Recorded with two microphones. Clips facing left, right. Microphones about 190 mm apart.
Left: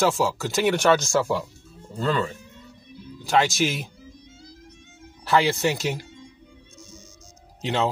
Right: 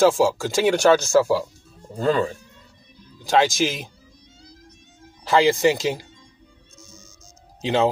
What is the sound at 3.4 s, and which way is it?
Speech, 90° right.